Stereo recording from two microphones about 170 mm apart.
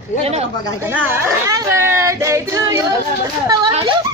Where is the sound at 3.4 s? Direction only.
20° right (ahead or behind).